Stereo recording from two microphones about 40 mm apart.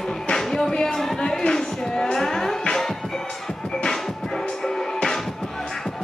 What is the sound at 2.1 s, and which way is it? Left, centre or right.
Music, centre.